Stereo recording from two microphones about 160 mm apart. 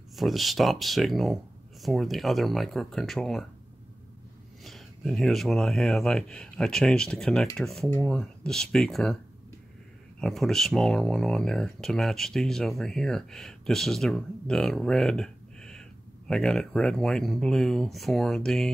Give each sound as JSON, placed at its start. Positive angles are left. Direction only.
{"t": 0.1, "sound": "speech", "side_deg": 0}
{"t": 4.6, "sound": "speech", "side_deg": 0}
{"t": 10.2, "sound": "speech", "side_deg": 0}